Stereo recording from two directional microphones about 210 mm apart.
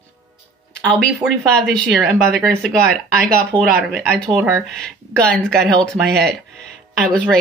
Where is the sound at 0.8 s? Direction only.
5° left (ahead or behind).